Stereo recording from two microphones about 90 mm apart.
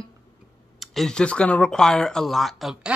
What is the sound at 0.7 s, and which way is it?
Speech, 5° left (ahead or behind).